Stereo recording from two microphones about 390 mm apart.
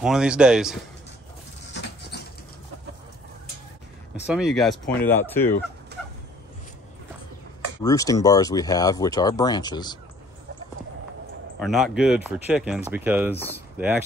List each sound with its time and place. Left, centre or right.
0.0 s speech: centre
1.7 s rodents: left
4.3 s speech: centre
5.9 s turkey: right
7.8 s speech: centre
11.6 s speech: centre